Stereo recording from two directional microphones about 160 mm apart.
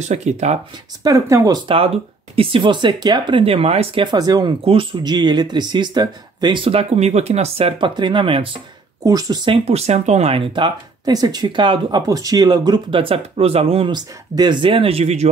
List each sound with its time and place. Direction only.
0.0 s speech: 45° right (ahead or behind)
1.0 s speech: 20° right (ahead or behind)
2.3 s speech: 30° right (ahead or behind)
9.7 s speech: 40° right (ahead or behind)